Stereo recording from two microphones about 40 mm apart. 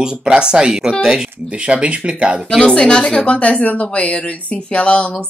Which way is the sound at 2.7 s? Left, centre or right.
Left.